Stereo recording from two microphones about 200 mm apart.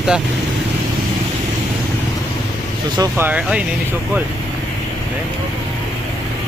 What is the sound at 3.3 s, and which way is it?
Speech, 5° right (ahead or behind).